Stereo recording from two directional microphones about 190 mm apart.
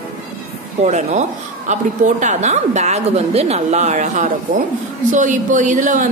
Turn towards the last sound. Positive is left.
turn(degrees=-40)  # may be behind; listen again after turning